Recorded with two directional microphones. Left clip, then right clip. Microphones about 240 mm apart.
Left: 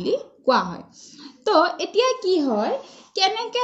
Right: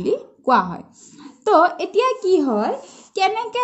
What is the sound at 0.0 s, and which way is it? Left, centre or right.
A woman's voice, right.